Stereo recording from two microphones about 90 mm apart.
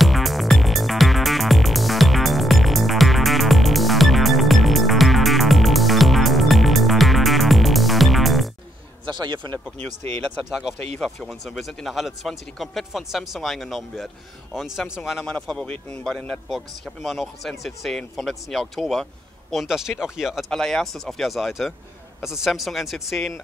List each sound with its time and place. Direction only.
0.0 s music: centre (ahead or behind)
9.0 s a man's voice: 60° right (ahead or behind)
10.6 s a man's voice: centre (ahead or behind)